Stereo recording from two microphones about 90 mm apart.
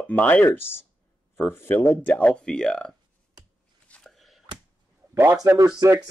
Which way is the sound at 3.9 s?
5° left (ahead or behind).